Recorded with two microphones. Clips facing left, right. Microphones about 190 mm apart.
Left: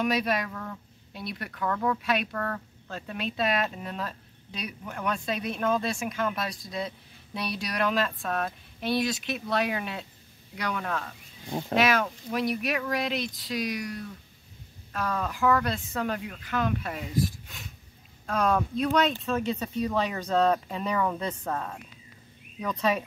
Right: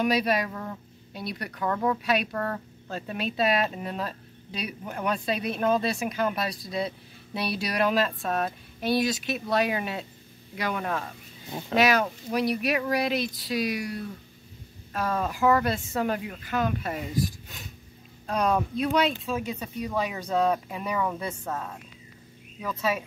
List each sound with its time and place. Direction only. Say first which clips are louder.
0.0 s speech: right 2 dB; centre (ahead or behind)
0.5 s speech: right 2 dB; 15° right (ahead or behind)
1.1 s speech: right 2 dB; centre (ahead or behind)
1.6 s speech: right 2 dB; 15° right (ahead or behind)
2.9 s speech: right 2 dB; 5° right (ahead or behind)
14.9 s speech: right 2 dB; 25° right (ahead or behind)
16.0 s speech: right 2 dB; 5° right (ahead or behind)
18.2 s speech: right 1 dB; 15° right (ahead or behind)